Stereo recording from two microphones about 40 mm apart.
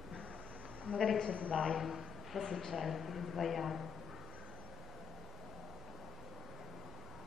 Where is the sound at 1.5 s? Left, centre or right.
Centre.